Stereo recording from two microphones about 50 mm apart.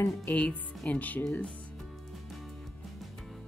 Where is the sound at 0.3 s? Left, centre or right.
Left.